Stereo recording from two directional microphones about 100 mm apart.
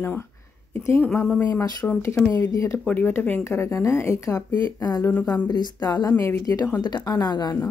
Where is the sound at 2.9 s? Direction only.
20° left (ahead or behind); by 4.5 s 35° left (ahead or behind).